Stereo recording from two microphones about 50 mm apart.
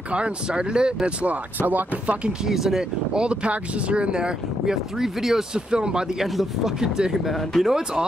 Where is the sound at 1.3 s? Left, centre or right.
Right.